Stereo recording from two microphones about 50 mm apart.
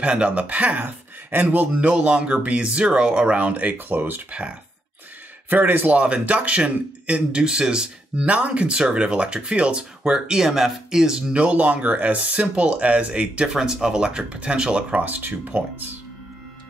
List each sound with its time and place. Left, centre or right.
0.0 s speech: right
1.7 s speech: right
3.7 s speech: right
4.3 s speech: right
5.5 s a man's voice: right
5.9 s speech: right
11.4 s speech: right
13.6 s speech: centre; by 16.0 s right